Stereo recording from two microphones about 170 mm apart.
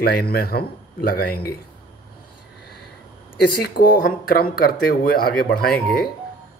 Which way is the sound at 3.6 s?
65° left (ahead or behind).